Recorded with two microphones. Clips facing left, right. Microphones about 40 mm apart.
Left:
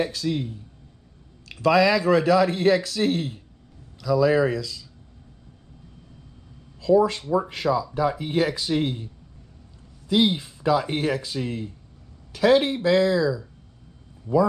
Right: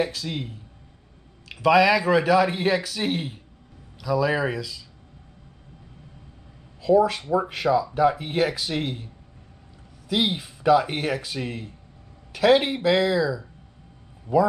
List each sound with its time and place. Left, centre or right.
0.0 s speech: right
6.8 s speech: right
10.3 s speech: right
11.3 s speech: right